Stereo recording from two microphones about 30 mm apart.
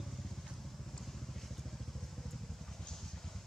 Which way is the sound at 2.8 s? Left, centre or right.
Centre.